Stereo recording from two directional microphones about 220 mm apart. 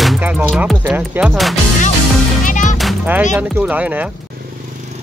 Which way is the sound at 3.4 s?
5° right (ahead or behind).